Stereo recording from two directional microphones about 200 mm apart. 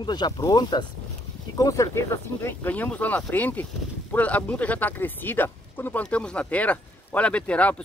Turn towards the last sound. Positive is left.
turn(degrees=5)  # may be behind; listen again after turning